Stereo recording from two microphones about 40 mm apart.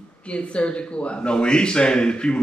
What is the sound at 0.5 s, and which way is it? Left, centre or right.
A man's voice, left.